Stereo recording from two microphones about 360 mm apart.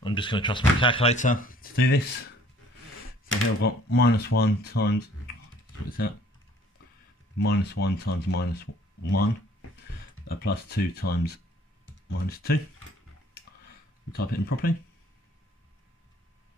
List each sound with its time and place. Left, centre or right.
0.0 s speech: centre
3.3 s speech: left
7.3 s speech: left
10.2 s speech: left
14.1 s speech: left